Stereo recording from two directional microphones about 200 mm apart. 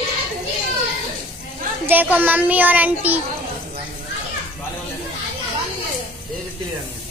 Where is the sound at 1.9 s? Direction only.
10° right (ahead or behind).